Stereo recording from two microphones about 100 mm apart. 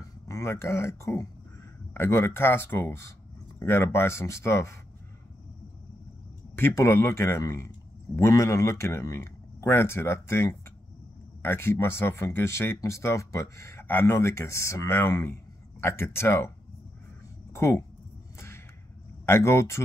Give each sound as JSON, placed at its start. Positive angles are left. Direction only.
{"t": 0.3, "sound": "speech", "side_deg": 30}
{"t": 6.5, "sound": "speech", "side_deg": 25}
{"t": 19.2, "sound": "speech", "side_deg": 25}